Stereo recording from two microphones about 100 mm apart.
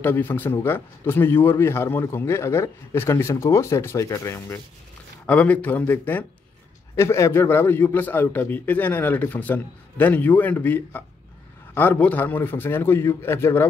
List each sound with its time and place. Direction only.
0.0 s speech: 20° left (ahead or behind)
5.2 s speech: 15° left (ahead or behind)